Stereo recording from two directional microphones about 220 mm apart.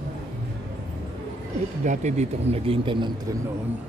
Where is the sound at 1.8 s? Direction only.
30° right (ahead or behind).